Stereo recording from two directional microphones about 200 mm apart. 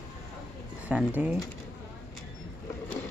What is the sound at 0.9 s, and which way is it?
Speech, 5° right (ahead or behind).